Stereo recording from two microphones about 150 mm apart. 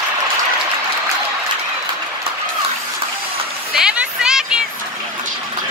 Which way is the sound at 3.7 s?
5° right (ahead or behind).